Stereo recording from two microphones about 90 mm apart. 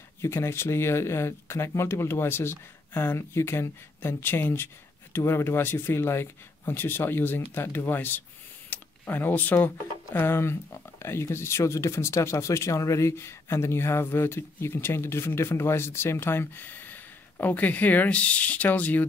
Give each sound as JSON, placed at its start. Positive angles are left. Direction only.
{"t": 0.2, "sound": "speech", "side_deg": 30}
{"t": 8.6, "sound": "a sound", "side_deg": 15}
{"t": 10.1, "sound": "speech", "side_deg": 30}